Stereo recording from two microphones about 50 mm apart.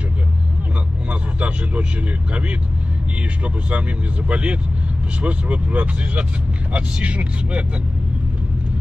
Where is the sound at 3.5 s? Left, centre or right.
Right.